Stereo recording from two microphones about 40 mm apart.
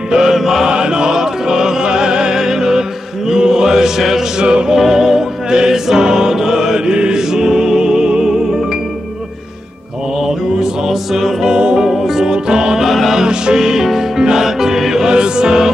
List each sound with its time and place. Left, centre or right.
0.1 s mantra: centre
0.7 s music: right
3.3 s chant: centre
4.4 s music: right
4.7 s music: centre
6.9 s music: right
10.2 s music: centre
11.4 s music: right
11.9 s music: centre
12.8 s music: centre
13.2 s music: centre